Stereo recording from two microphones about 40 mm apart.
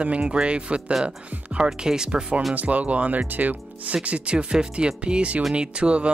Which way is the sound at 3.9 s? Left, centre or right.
Right.